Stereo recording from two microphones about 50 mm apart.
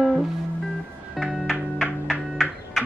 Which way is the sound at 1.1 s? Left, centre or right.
Centre.